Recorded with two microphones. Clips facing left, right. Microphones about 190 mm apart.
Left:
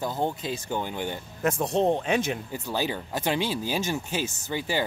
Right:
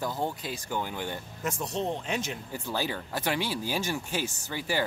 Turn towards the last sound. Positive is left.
turn(degrees=20)  # may be behind; listen again after turning